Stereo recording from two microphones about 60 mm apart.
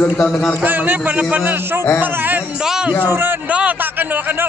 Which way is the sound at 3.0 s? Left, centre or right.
Right.